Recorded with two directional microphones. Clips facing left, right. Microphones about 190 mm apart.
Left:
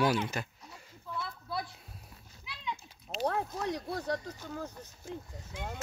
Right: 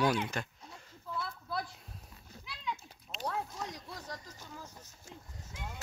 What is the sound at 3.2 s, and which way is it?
Speech, 60° left (ahead or behind).